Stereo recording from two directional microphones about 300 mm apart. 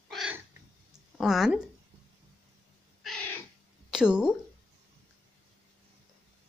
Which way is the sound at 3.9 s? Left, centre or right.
Centre.